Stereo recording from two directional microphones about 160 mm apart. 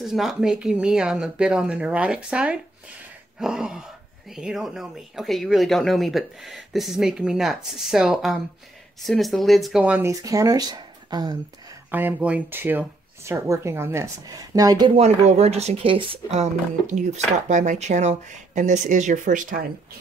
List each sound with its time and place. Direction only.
0.0 s speech: centre (ahead or behind); by 11.3 s 25° right (ahead or behind)
11.9 s speech: 10° right (ahead or behind)
15.0 s speech: 40° right (ahead or behind)